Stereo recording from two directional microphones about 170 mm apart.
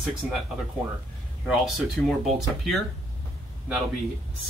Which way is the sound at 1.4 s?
Centre (ahead or behind).